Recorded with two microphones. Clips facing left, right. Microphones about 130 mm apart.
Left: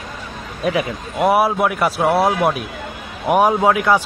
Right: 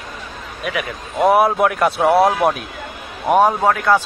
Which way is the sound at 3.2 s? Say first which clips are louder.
Even; 10° left (ahead or behind).